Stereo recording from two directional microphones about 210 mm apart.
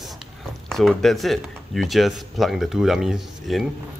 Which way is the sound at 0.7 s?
Centre (ahead or behind).